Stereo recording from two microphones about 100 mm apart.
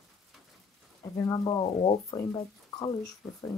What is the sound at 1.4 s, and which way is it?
Speech, 55° left (ahead or behind).